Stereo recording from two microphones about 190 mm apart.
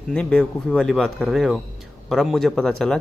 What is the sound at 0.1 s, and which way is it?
A man's voice, 5° left (ahead or behind).